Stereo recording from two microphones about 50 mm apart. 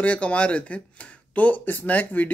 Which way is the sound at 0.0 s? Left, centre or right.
Left.